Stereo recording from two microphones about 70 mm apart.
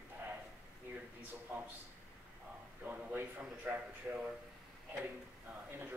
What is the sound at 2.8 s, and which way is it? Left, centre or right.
A man's voice, centre.